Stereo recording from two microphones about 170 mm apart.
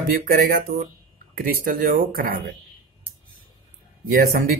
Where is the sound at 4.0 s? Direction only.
65° right (ahead or behind).